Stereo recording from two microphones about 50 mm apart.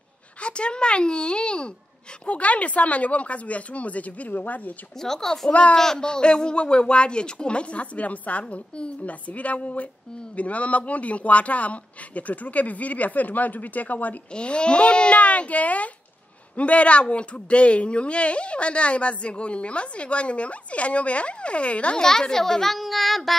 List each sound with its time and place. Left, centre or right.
0.4 s speech: left
5.0 s a woman's voice: centre
5.5 s speech: left
5.8 s speech: centre; by 14.1 s left
14.3 s speech: left
22.0 s a child's voice: centre